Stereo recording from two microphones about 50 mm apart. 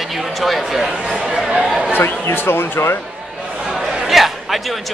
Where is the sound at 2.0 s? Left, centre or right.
Left.